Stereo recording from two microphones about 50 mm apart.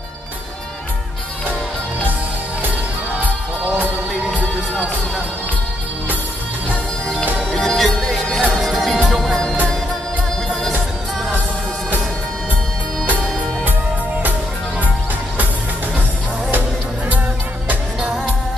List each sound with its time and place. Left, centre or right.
3.6 s music: right
7.5 s music: centre